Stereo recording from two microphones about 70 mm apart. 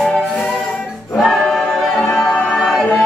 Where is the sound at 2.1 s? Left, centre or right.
Centre.